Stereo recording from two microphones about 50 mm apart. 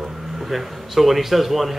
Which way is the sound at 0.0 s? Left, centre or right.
Centre.